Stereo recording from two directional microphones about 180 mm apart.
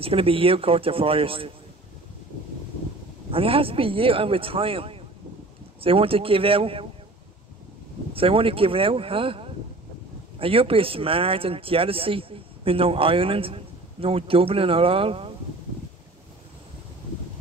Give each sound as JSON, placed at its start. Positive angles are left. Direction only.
{"t": 0.0, "sound": "speech", "side_deg": -30}
{"t": 3.3, "sound": "speech", "side_deg": -30}
{"t": 8.1, "sound": "speech", "side_deg": -30}